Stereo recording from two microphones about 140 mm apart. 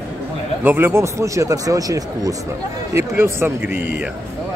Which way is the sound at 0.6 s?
15° right (ahead or behind).